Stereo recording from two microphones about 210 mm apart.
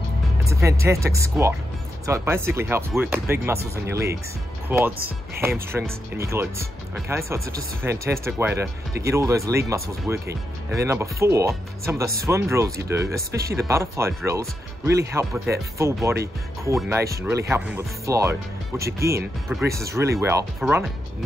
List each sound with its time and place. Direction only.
0.5 s speech: 15° right (ahead or behind)